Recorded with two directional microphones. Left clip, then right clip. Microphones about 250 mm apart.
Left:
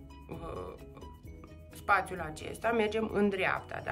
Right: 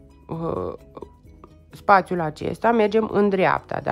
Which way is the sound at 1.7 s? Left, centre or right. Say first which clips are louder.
Right 12 dB; centre.